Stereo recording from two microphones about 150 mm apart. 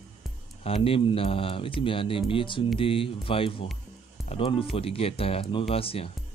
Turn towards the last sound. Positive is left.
turn(degrees=40)  # may be behind; listen again after turning